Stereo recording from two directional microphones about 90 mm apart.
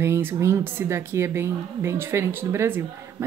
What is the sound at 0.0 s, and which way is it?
A woman's voice, 30° right (ahead or behind).